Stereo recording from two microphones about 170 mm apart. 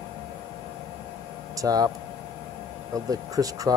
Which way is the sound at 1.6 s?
20° right (ahead or behind).